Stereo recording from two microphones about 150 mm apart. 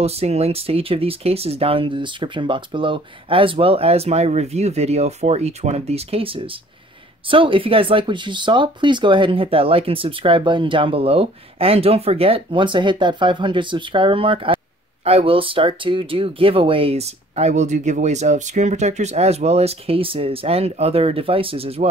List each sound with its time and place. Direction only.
0.0 s speech: 45° right (ahead or behind)